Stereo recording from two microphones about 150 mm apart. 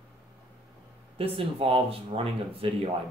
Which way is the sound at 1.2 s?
35° right (ahead or behind).